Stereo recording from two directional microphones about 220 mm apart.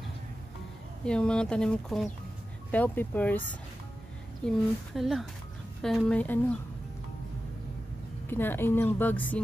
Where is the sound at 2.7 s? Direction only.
5° left (ahead or behind).